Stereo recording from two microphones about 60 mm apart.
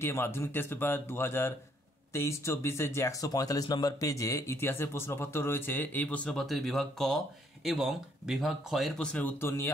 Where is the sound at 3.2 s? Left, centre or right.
Left.